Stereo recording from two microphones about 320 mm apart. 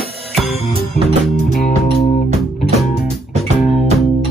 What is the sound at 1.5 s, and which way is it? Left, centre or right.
Music, centre.